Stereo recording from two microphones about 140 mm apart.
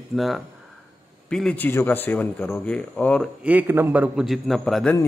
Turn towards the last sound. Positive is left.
turn(degrees=5)  # may be behind; listen again after turning